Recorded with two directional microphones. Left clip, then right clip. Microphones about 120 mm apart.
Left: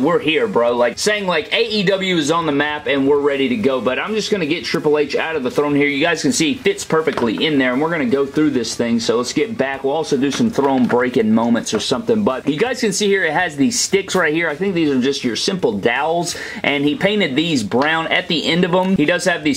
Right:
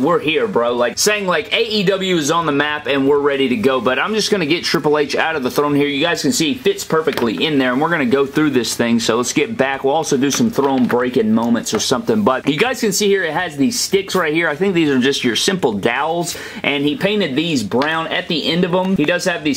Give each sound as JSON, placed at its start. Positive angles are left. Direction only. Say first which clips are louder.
{"t": 0.1, "sound": "speech", "louder": "even", "side_deg": -10}
{"t": 0.7, "sound": "speech", "louder": "even", "side_deg": -25}
{"t": 7.6, "sound": "speech", "louder": "right 1 dB", "side_deg": -35}
{"t": 10.6, "sound": "speech", "louder": "left 1 dB", "side_deg": -10}
{"t": 11.9, "sound": "speech", "louder": "right 2 dB", "side_deg": -35}
{"t": 12.8, "sound": "speech", "louder": "even", "side_deg": -15}
{"t": 14.4, "sound": "speech", "louder": "right 2 dB", "side_deg": -30}
{"t": 17.0, "sound": "speech", "louder": "left 1 dB", "side_deg": -15}
{"t": 17.7, "sound": "speech", "louder": "left 2 dB", "side_deg": 0}